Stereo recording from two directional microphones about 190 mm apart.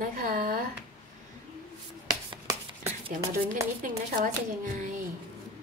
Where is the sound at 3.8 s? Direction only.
45° right (ahead or behind).